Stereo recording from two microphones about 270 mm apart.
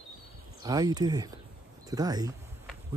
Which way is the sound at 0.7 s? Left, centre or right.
Centre.